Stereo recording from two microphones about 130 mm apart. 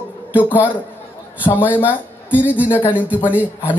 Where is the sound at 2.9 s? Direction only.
10° right (ahead or behind).